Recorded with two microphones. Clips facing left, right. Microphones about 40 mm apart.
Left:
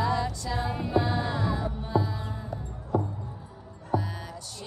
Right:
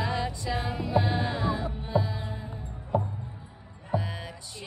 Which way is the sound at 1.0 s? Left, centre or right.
Right.